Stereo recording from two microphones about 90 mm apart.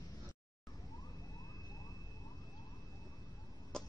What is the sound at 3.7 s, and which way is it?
Cough, 5° left (ahead or behind).